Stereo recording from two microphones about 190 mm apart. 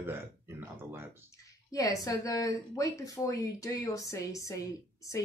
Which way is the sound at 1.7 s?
20° left (ahead or behind).